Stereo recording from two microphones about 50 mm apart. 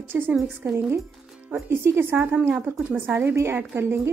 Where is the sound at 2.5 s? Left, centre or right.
Right.